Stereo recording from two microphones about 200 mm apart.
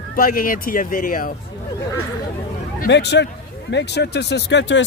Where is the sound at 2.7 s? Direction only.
55° left (ahead or behind).